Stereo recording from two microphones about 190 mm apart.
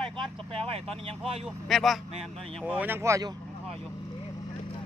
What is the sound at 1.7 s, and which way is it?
Speech, centre (ahead or behind).